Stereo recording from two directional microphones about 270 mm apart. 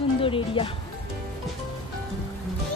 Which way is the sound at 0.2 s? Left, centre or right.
Centre.